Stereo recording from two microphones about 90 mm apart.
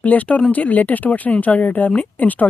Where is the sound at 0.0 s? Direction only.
15° left (ahead or behind).